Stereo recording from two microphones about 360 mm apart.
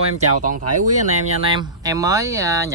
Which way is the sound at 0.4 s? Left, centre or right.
Right.